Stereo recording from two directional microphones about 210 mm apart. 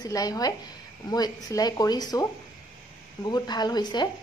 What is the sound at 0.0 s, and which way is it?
A woman's voice, 15° left (ahead or behind).